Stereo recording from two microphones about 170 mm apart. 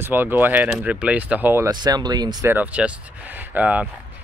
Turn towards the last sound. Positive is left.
turn(degrees=-10)  # may be behind; listen again after turning